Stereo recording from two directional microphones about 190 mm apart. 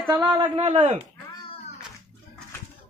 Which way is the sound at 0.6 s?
35° right (ahead or behind).